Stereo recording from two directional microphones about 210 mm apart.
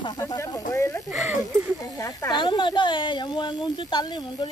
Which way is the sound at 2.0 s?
20° left (ahead or behind).